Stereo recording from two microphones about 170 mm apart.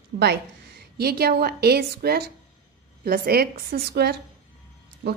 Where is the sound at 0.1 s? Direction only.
65° right (ahead or behind).